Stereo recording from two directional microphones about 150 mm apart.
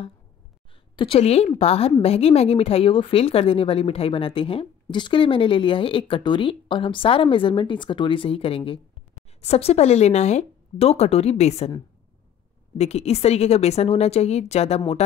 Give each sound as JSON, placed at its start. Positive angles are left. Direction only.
{"t": 0.9, "sound": "a woman's voice", "side_deg": 35}
{"t": 12.7, "sound": "speech", "side_deg": 45}